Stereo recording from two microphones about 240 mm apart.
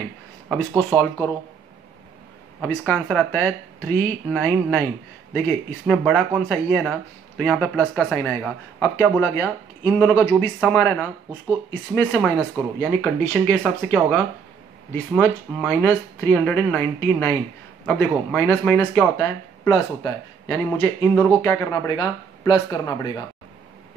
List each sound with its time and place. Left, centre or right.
0.9 s speech: centre
2.6 s speech: centre